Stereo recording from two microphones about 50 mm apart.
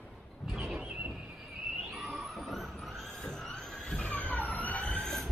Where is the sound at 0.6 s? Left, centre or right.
Centre.